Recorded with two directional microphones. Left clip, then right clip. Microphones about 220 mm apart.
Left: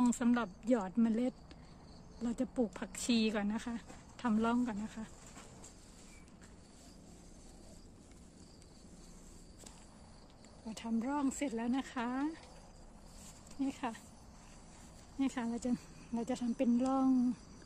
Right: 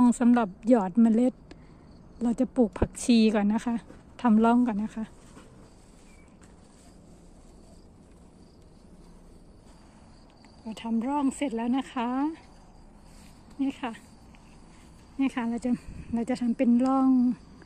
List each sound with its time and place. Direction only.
0.0 s a woman's voice: 30° right (ahead or behind)
10.7 s speech: 15° right (ahead or behind)
13.6 s speech: 20° right (ahead or behind)
15.1 s speech: 20° right (ahead or behind)